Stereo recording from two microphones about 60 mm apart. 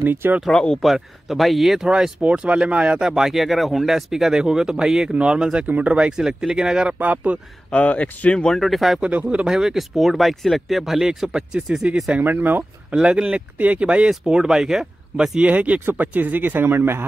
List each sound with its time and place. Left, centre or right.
0.0 s speech: right
0.5 s speech: centre
0.8 s speech: centre
7.0 s speech: right
7.7 s speech: left
8.5 s speech: centre
9.0 s speech: right
9.6 s speech: centre
12.2 s speech: right
12.9 s speech: centre
15.5 s speech: right